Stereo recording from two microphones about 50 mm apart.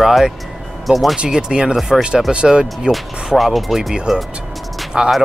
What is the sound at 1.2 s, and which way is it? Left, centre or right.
Speech, centre.